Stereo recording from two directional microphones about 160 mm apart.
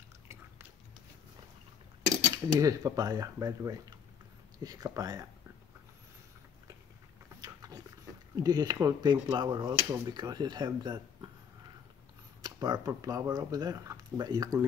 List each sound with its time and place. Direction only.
2.3 s speech: 20° right (ahead or behind)
7.3 s a sound: 20° right (ahead or behind)
8.4 s speech: 25° right (ahead or behind)
12.4 s speech: 20° right (ahead or behind)